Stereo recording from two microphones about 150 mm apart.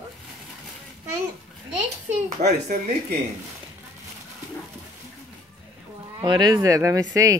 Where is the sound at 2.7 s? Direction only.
60° right (ahead or behind).